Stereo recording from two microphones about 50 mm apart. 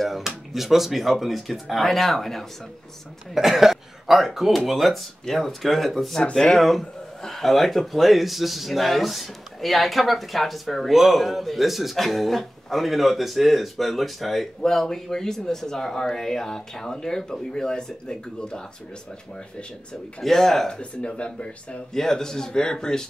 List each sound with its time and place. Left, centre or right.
0.0 s speech: centre
3.3 s speech: centre
6.3 s speech: centre
20.2 s speech: centre
20.8 s speech: left
21.9 s speech: centre